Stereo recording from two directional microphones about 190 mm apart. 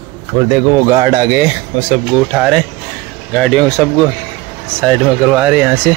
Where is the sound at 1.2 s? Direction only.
60° right (ahead or behind).